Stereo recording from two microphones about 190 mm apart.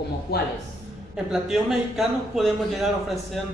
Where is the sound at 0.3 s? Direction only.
55° left (ahead or behind).